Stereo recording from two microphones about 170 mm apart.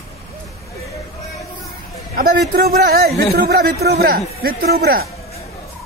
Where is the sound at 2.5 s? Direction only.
60° right (ahead or behind).